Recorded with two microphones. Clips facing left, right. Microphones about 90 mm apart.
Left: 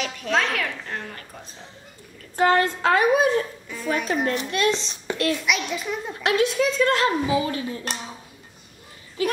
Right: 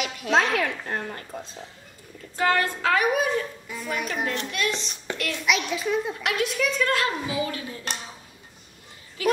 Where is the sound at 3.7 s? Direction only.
5° right (ahead or behind).